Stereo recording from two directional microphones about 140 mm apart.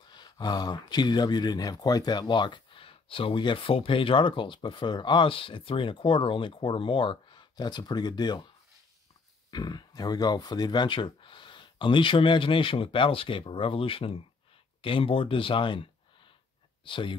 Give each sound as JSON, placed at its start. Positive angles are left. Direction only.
{"t": 0.1, "sound": "speech", "side_deg": 30}
{"t": 9.5, "sound": "speech", "side_deg": 30}